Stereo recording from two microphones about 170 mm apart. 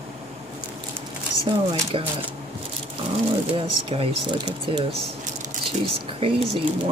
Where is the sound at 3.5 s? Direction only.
30° right (ahead or behind).